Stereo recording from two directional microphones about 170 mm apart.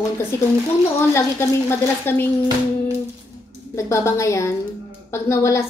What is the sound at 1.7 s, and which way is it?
Speech, 10° left (ahead or behind).